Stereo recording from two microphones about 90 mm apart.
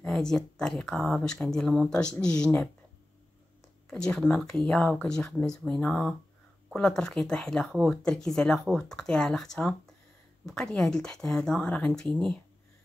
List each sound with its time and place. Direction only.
0.0 s a sound: 5° left (ahead or behind)
0.6 s speech: 5° left (ahead or behind)
3.9 s speech: 10° left (ahead or behind)